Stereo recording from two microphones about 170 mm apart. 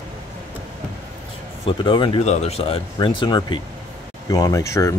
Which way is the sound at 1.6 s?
30° left (ahead or behind).